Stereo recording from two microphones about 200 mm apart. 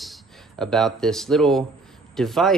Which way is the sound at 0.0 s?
Centre (ahead or behind).